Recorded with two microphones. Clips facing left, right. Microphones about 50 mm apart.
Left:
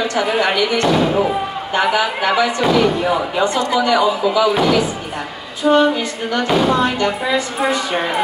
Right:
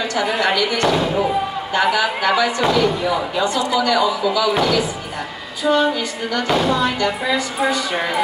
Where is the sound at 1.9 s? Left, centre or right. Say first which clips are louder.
Left 1 dB; left.